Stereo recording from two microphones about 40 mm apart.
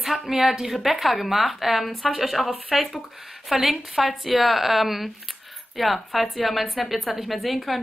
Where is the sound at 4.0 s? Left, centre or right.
Centre.